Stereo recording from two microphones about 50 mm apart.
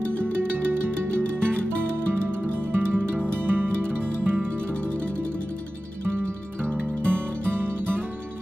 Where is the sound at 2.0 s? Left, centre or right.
Right.